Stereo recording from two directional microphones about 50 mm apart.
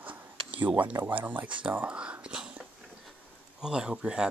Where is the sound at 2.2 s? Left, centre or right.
Centre.